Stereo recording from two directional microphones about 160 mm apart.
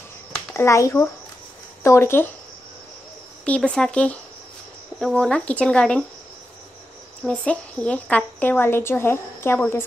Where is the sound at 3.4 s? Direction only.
5° left (ahead or behind).